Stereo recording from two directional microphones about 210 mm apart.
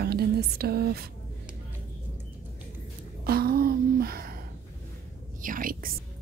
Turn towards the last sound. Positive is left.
turn(degrees=-40)  # may be behind; listen again after turning